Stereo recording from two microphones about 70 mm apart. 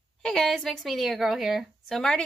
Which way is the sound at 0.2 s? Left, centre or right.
Centre.